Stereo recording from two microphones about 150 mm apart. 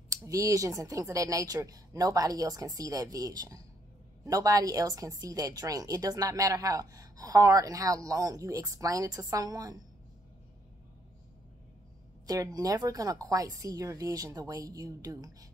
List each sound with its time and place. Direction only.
0.1 s a woman's voice: 20° right (ahead or behind)
12.3 s a woman's voice: 25° right (ahead or behind)